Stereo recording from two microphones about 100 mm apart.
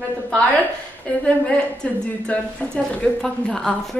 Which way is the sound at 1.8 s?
10° left (ahead or behind).